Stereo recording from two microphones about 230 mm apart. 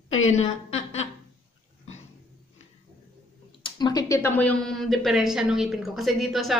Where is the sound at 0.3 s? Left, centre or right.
Left.